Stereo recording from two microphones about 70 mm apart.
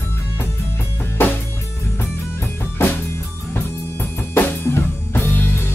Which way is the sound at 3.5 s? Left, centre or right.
Left.